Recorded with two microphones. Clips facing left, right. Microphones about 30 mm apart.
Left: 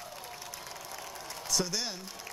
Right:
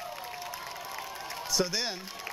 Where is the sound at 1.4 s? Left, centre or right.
Centre.